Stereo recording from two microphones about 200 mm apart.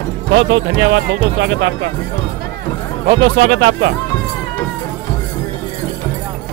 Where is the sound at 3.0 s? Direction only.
60° right (ahead or behind).